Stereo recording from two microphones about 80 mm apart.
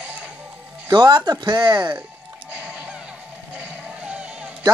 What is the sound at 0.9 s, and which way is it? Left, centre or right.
Speech, right.